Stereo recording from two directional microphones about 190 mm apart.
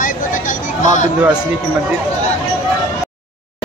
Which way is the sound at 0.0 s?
45° left (ahead or behind).